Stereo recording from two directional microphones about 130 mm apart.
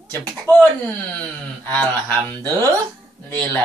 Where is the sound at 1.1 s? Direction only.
15° left (ahead or behind).